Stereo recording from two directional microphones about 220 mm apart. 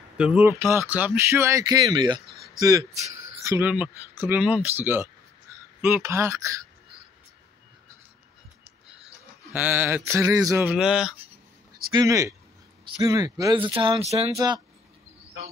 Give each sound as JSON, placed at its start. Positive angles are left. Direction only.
{"t": 0.2, "sound": "speech", "side_deg": -5}
{"t": 2.9, "sound": "a man's voice", "side_deg": -30}
{"t": 3.4, "sound": "speech", "side_deg": -10}
{"t": 9.5, "sound": "speech", "side_deg": -10}
{"t": 11.9, "sound": "speech", "side_deg": -15}
{"t": 14.3, "sound": "speech", "side_deg": -15}